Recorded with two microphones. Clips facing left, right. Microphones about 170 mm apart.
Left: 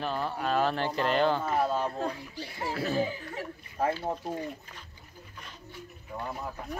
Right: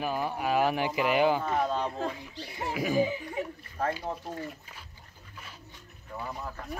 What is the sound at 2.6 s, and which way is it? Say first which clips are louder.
Speech: right 2 dB; 15° right (ahead or behind).